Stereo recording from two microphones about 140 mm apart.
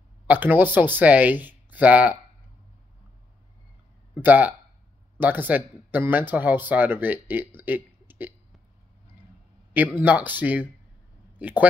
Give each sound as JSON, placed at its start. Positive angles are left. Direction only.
{"t": 0.3, "sound": "speech", "side_deg": -15}
{"t": 4.1, "sound": "speech", "side_deg": -10}
{"t": 9.8, "sound": "speech", "side_deg": -10}